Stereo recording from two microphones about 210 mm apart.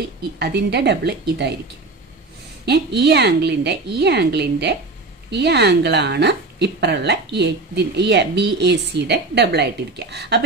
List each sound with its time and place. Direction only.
0.0 s a woman's voice: 50° right (ahead or behind)
2.6 s a woman's voice: 55° right (ahead or behind)